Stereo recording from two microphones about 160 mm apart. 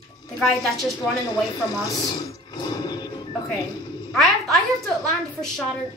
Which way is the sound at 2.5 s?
25° left (ahead or behind).